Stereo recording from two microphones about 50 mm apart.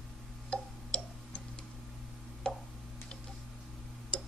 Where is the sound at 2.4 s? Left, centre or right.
Centre.